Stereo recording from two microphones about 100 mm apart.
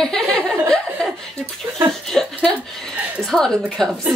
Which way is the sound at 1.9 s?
5° left (ahead or behind).